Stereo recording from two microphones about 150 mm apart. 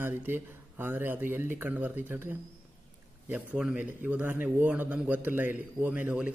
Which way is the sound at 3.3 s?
5° right (ahead or behind).